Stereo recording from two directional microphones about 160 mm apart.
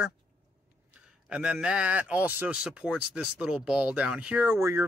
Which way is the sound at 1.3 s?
5° right (ahead or behind).